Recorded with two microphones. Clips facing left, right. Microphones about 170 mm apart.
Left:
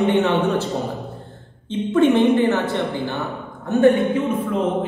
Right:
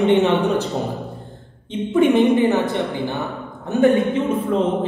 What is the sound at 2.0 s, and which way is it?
Speech, 10° right (ahead or behind).